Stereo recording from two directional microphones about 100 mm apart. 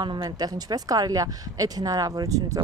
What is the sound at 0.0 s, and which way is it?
Speech, 45° right (ahead or behind).